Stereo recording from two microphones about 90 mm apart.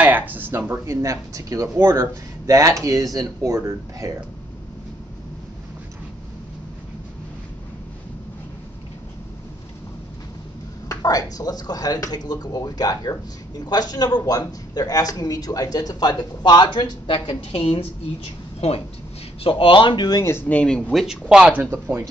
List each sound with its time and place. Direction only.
0.0 s speech: 20° right (ahead or behind)
1.0 s speech: 40° right (ahead or behind)
10.9 s a man's voice: 45° left (ahead or behind); by 17.8 s 85° left
19.4 s speech: 75° left (ahead or behind); by 20.2 s 60° left (ahead or behind)
20.2 s speech: 30° left (ahead or behind)
20.4 s speech: 15° left (ahead or behind)
20.9 s speech: 5° right (ahead or behind)
21.6 s speech: 25° right (ahead or behind)